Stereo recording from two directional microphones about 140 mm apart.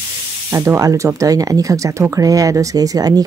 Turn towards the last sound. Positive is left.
turn(degrees=-25)  # may be behind; listen again after turning